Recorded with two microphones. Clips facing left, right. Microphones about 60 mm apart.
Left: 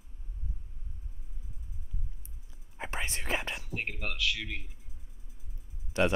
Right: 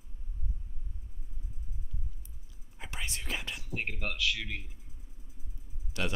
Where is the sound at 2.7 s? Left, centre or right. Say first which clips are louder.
Left 4 dB; left.